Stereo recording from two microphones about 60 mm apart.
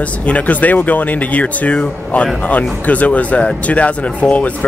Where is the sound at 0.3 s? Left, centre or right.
Left.